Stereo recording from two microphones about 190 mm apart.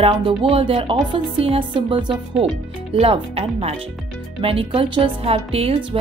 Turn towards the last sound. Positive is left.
turn(degrees=-30)  # may be behind; listen again after turning